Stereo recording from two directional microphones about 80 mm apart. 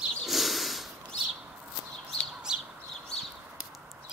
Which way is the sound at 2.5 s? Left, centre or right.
Centre.